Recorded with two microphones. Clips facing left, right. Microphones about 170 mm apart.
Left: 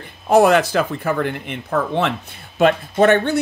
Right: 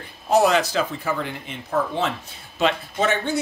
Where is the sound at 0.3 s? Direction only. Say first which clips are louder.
Left 5 dB; 55° left (ahead or behind).